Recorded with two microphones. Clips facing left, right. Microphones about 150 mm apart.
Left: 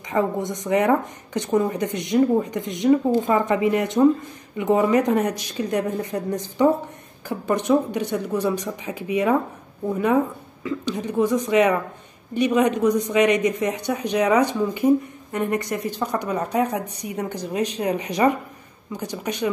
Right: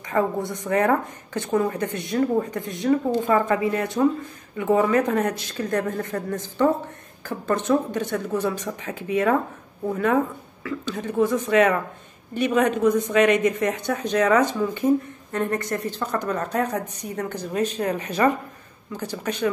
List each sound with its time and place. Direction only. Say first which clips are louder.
0.1 s a woman's voice: left 1 dB; 15° left (ahead or behind)
10.6 s a woman's voice: left 3 dB; 15° left (ahead or behind)